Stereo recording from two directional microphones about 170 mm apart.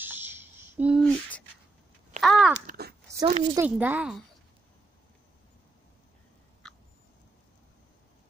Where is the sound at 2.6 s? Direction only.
65° right (ahead or behind).